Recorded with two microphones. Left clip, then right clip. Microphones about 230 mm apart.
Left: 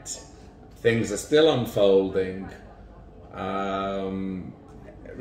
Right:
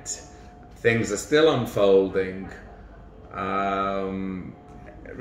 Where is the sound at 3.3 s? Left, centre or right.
Centre.